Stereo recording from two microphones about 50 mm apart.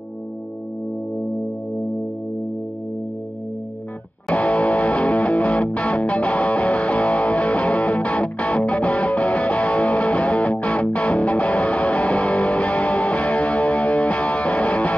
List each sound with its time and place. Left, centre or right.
4.3 s music: left